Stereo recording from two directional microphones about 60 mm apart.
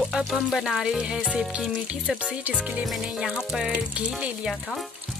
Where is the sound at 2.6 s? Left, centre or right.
Right.